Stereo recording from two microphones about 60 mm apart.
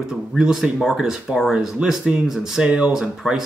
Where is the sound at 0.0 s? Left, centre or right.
Centre.